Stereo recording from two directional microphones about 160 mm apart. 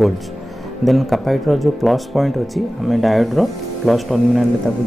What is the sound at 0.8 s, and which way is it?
Speech, centre (ahead or behind).